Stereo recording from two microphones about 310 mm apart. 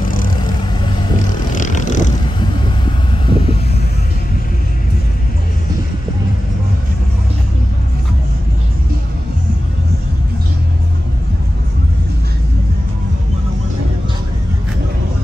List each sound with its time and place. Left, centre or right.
1.5 s vehicle: left